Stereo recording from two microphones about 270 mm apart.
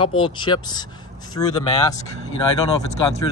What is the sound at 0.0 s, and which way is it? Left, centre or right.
Speech, centre.